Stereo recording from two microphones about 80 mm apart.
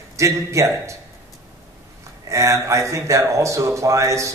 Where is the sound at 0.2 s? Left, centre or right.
Right.